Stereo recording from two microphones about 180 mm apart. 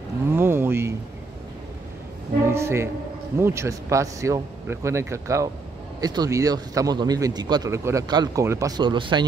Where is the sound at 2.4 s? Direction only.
15° right (ahead or behind).